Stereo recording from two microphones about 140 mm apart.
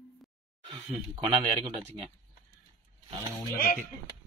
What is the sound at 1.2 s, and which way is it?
Speech, 45° right (ahead or behind).